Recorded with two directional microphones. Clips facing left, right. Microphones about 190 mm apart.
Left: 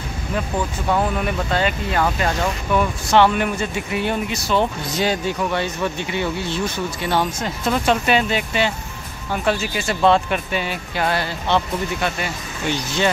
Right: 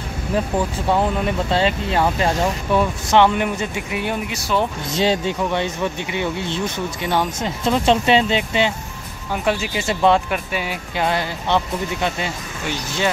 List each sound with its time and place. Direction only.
0.8 s speech: 20° right (ahead or behind)
4.8 s speech: 25° right (ahead or behind)